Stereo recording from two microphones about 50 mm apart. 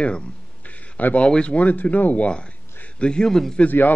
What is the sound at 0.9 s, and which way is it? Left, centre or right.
Speech, left.